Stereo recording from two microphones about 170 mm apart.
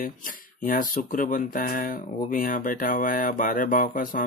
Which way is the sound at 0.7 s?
55° left (ahead or behind).